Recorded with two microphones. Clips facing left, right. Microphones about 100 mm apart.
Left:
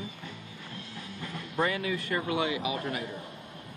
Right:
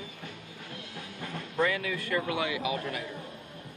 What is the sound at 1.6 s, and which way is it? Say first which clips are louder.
Speech: even; 30° left (ahead or behind).